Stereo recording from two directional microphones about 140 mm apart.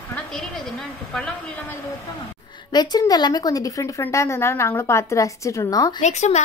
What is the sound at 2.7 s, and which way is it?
A woman's voice, 30° left (ahead or behind).